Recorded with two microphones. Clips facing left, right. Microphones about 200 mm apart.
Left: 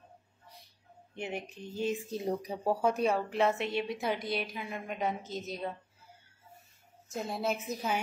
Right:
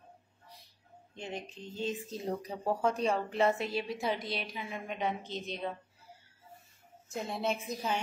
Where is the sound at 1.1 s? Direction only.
10° left (ahead or behind).